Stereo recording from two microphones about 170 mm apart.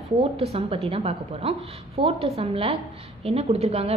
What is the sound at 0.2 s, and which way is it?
A woman's voice, 35° right (ahead or behind).